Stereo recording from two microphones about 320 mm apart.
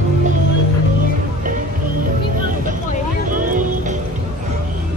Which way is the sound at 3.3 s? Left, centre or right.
Right.